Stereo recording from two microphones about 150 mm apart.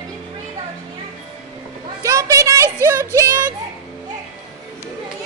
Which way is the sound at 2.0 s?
20° right (ahead or behind).